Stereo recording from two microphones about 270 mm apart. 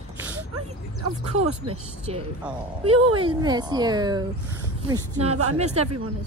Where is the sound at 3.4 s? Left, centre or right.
Centre.